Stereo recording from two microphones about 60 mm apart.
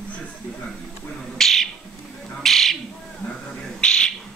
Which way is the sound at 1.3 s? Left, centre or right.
Centre.